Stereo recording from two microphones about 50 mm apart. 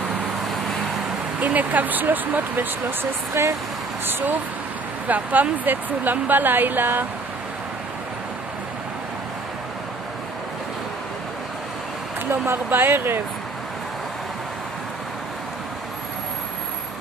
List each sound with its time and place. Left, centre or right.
1.4 s speech: right
3.4 s speech: right
4.0 s speech: right
5.0 s speech: right
12.3 s speech: right